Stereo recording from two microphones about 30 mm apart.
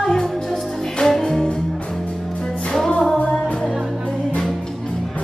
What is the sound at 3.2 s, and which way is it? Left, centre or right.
Music, left.